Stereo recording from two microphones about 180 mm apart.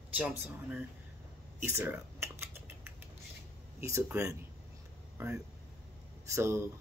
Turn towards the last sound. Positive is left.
turn(degrees=-15)  # may be behind; listen again after turning